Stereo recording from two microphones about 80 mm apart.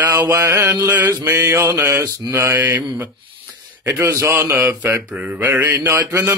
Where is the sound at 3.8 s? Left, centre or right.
Right.